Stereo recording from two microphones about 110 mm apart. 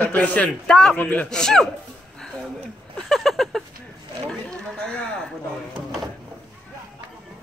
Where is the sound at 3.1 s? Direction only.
Centre (ahead or behind).